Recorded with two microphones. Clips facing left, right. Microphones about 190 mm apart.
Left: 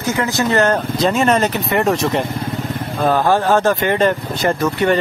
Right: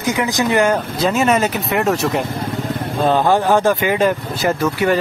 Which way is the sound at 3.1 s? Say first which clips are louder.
Even; 15° right (ahead or behind).